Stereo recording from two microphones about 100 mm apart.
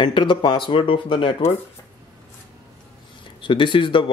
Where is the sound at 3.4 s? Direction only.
55° left (ahead or behind).